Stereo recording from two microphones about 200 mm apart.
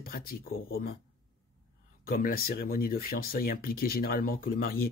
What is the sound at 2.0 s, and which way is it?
A man's voice, 45° left (ahead or behind).